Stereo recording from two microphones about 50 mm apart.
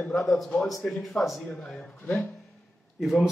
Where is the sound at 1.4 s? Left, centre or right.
Centre.